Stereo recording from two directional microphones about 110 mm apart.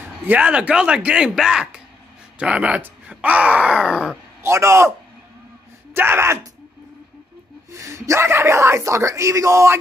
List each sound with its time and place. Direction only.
0.3 s speech: 10° right (ahead or behind)
4.4 s speech: 25° right (ahead or behind)
5.9 s speech: 20° right (ahead or behind)
7.7 s speech: 25° right (ahead or behind)